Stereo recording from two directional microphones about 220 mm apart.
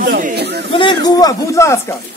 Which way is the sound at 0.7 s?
20° left (ahead or behind).